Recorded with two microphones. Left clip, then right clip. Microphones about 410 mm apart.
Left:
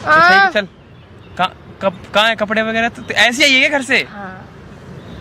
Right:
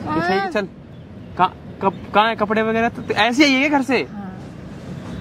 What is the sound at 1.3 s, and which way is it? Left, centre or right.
Speech, centre.